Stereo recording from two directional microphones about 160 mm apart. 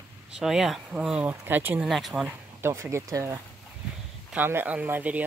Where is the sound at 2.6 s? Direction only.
15° right (ahead or behind).